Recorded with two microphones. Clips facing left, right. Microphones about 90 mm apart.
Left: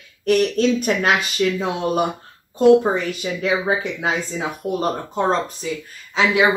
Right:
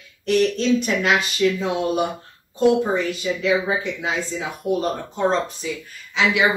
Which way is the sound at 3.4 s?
45° left (ahead or behind).